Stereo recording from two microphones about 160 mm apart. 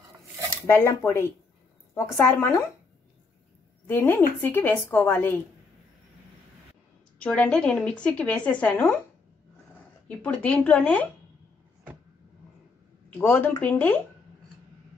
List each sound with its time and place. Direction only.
0.7 s speech: 15° left (ahead or behind)
3.8 s speech: 15° left (ahead or behind)
7.2 s speech: 10° left (ahead or behind)
10.0 s speech: 10° left (ahead or behind)
13.2 s speech: 10° left (ahead or behind)